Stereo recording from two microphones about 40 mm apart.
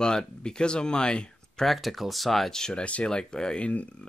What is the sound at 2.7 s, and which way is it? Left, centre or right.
Speech, left.